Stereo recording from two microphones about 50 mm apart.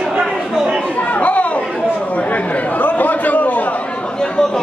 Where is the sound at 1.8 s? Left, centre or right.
Left; by 4.6 s centre.